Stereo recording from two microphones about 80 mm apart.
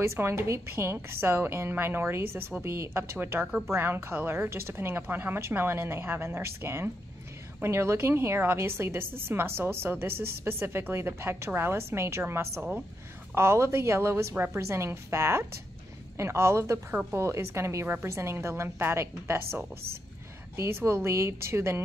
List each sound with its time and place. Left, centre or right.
0.0 s a woman's voice: right